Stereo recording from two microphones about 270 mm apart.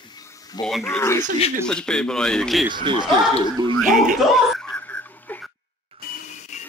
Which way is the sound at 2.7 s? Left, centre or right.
Centre.